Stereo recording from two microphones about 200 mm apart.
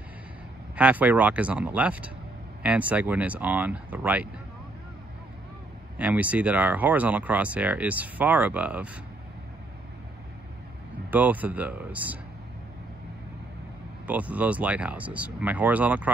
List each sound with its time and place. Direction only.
0.7 s speech: 5° right (ahead or behind)
5.9 s speech: 5° right (ahead or behind)
11.1 s speech: 10° right (ahead or behind)
14.0 s speech: 5° right (ahead or behind)